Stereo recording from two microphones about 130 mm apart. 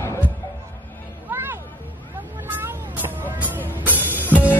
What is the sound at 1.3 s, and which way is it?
Music, 20° right (ahead or behind).